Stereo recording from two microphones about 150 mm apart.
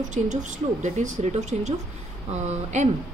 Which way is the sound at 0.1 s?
55° right (ahead or behind).